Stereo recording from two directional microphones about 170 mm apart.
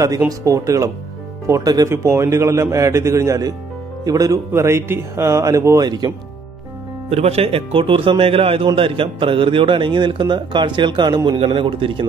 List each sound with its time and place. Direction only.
0.3 s a man's voice: 20° right (ahead or behind)
7.1 s a man's voice: 40° right (ahead or behind)